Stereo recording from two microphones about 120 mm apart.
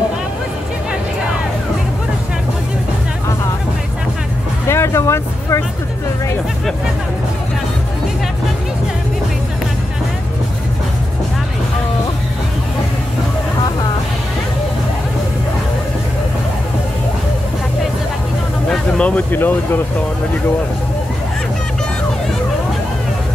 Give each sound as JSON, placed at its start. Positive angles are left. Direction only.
{"t": 4.6, "sound": "vehicle", "side_deg": 20}
{"t": 18.7, "sound": "speech", "side_deg": 10}